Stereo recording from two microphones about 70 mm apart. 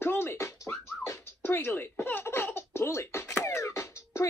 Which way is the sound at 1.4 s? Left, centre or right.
Left.